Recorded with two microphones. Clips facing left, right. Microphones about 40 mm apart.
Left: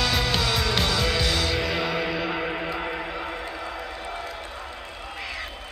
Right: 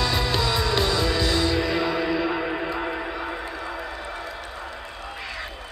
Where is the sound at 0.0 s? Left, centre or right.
Left.